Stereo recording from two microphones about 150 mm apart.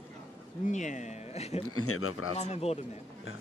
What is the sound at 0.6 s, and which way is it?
Speech, 55° left (ahead or behind).